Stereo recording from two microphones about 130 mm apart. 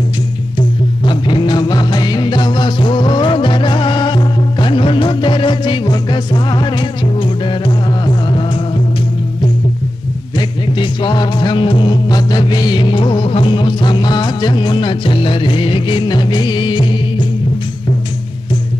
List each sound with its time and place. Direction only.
0.6 s music: 40° left (ahead or behind)
10.8 s music: 35° left (ahead or behind)